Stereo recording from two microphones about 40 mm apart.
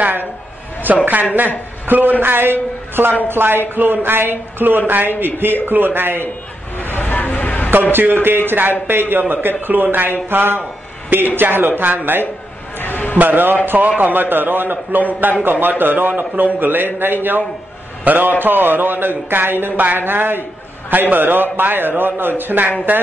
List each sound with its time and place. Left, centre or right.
0.8 s a man's voice: right
6.8 s a sound: left
7.9 s speech: right
10.3 s speech: right
12.7 s a sound: left
13.2 s a man's voice: right